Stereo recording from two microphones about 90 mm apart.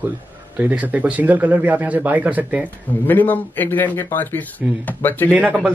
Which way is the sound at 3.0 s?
20° left (ahead or behind).